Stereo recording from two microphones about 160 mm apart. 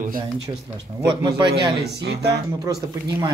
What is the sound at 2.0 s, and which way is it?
Speech, 90° right.